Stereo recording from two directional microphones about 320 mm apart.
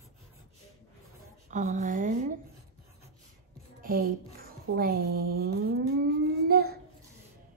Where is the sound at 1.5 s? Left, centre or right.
Right.